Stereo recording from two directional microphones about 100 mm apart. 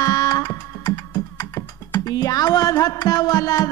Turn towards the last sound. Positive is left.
turn(degrees=35)  # may be behind; listen again after turning